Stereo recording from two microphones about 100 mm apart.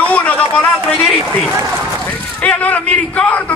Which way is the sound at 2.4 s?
15° left (ahead or behind).